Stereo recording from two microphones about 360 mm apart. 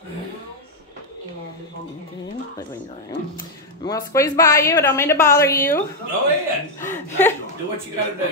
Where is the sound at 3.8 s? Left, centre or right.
Centre.